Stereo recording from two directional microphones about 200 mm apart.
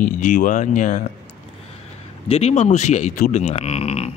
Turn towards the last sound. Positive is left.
turn(degrees=30)  # may be behind; listen again after turning